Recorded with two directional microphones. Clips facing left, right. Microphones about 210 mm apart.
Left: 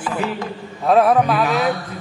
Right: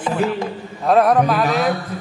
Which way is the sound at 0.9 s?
Centre (ahead or behind).